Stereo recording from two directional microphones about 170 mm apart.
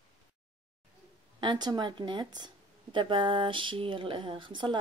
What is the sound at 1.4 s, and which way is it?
Speech, 25° right (ahead or behind).